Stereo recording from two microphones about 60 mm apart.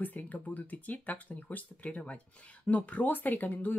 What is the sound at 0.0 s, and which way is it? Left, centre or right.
Speech, left.